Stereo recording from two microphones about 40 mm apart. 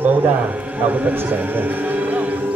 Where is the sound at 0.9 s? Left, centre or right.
Right.